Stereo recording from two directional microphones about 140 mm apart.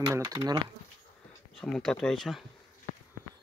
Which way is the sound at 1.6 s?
5° left (ahead or behind).